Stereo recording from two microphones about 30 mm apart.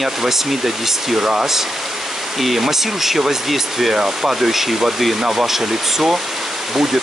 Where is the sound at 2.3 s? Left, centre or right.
Centre.